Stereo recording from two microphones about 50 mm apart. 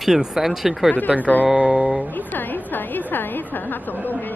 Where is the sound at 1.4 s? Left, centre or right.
Right.